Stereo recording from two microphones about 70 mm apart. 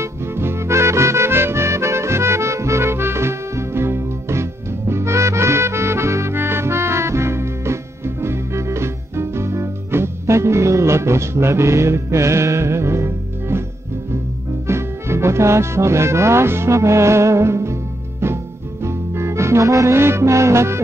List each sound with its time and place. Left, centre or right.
0.0 s music: right
14.7 s speech: right
18.2 s music: right